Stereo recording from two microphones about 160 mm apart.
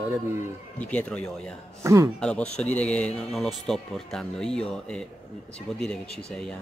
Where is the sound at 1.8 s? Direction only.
20° right (ahead or behind).